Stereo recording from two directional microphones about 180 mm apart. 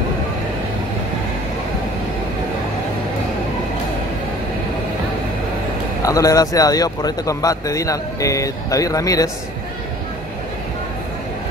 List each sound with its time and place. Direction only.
6.0 s a man's voice: 20° left (ahead or behind)